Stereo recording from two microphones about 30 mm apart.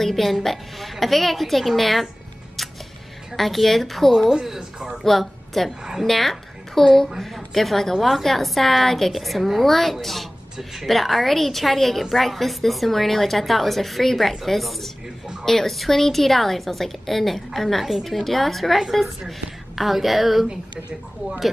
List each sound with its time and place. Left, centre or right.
0.0 s a woman's voice: centre
3.3 s a woman's voice: centre
4.6 s speech: right
5.2 s a woman's voice: centre
10.0 s a sound: centre
10.9 s a woman's voice: centre